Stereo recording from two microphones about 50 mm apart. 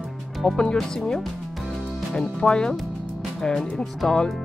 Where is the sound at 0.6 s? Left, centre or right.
Centre.